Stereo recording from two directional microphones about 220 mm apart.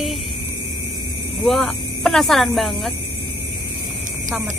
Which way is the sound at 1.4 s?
Centre (ahead or behind).